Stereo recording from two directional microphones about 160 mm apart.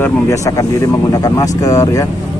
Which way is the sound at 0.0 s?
20° left (ahead or behind).